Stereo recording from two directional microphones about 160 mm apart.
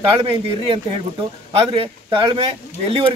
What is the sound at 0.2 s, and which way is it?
Speech, 35° right (ahead or behind).